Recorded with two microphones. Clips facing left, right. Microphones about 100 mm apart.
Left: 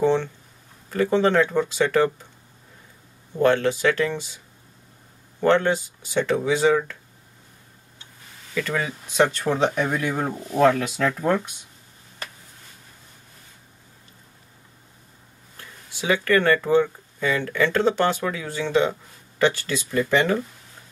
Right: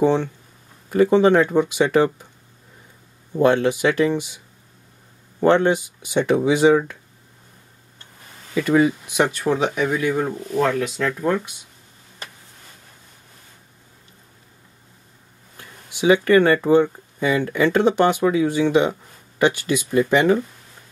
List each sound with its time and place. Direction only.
0.0 s speech: 15° right (ahead or behind)
3.3 s speech: 15° right (ahead or behind)
5.4 s speech: 15° right (ahead or behind)
8.5 s speech: 15° right (ahead or behind); by 11.4 s 5° left (ahead or behind)
15.5 s speech: 15° right (ahead or behind)